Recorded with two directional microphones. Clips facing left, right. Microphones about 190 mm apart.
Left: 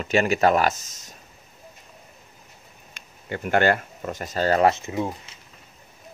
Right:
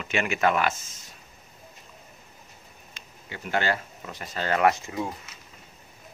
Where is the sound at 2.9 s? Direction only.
50° left (ahead or behind); by 5.4 s 25° left (ahead or behind).